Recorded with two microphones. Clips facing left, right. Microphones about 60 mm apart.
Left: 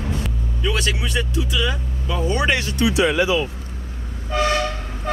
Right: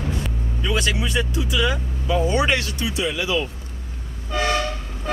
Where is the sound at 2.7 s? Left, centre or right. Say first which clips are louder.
Left 7 dB; left.